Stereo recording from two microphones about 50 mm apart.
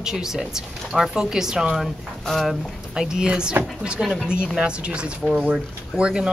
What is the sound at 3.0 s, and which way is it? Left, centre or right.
Speech, centre.